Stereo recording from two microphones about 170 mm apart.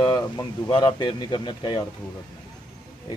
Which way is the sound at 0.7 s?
25° left (ahead or behind).